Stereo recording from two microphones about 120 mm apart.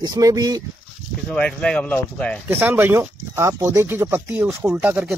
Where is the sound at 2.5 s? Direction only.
15° right (ahead or behind).